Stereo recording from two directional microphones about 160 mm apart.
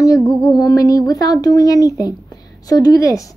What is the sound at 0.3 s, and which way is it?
A woman's voice, 25° left (ahead or behind).